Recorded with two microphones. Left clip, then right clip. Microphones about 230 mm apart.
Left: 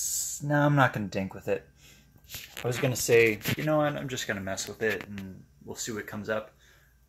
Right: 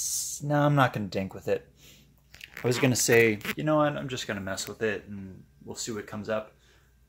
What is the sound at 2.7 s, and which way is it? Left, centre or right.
Speech, right.